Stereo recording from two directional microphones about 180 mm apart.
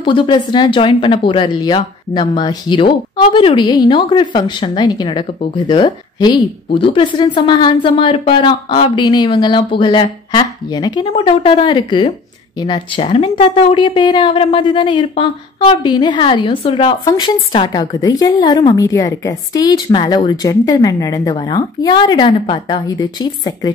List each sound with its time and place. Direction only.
0.0 s a woman's voice: 25° left (ahead or behind)